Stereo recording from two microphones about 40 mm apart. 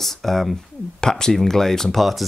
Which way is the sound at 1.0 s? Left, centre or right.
Centre.